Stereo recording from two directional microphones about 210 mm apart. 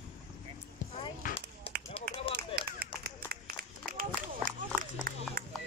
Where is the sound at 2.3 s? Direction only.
50° right (ahead or behind).